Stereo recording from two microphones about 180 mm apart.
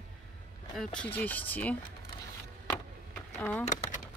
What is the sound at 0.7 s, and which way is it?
Speech, 5° left (ahead or behind).